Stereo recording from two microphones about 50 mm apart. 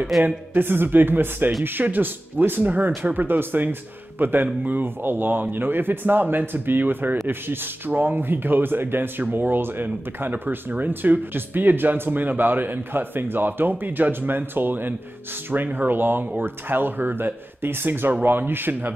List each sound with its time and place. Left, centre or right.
0.2 s speech: right